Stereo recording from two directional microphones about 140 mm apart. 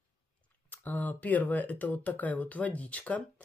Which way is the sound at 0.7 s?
10° left (ahead or behind).